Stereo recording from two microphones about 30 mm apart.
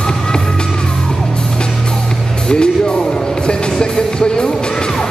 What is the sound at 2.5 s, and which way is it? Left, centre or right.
Music, left.